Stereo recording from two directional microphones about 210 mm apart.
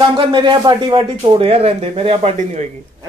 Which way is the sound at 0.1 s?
20° right (ahead or behind).